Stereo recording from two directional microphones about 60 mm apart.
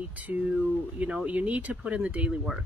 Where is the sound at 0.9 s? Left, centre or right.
Right.